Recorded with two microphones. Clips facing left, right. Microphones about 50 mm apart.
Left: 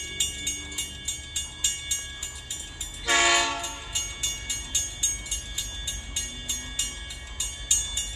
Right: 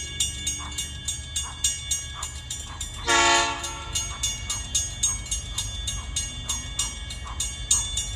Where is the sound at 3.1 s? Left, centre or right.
Centre.